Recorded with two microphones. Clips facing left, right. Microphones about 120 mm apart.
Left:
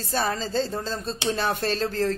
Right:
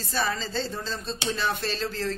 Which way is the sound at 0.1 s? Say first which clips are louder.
Left 3 dB; 40° left (ahead or behind).